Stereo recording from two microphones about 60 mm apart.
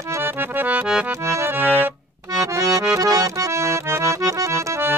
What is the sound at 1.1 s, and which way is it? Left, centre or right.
Accordion, right.